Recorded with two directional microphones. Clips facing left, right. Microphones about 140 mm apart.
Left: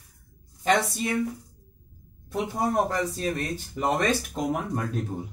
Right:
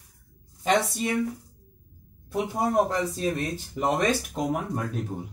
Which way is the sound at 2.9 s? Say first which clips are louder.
Right 1 dB; 20° right (ahead or behind).